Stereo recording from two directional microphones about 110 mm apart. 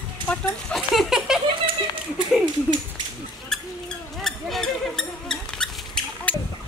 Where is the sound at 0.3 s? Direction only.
10° left (ahead or behind).